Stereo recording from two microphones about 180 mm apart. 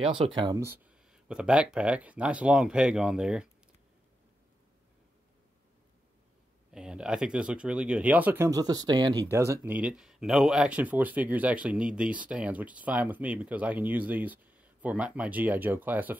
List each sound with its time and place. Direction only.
0.0 s speech: 30° right (ahead or behind)
0.7 s speech: 5° right (ahead or behind)
6.7 s speech: 5° right (ahead or behind)